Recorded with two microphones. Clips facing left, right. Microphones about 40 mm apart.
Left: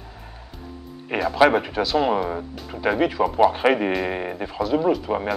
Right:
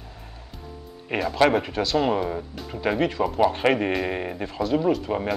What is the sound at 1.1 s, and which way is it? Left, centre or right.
Speech, centre.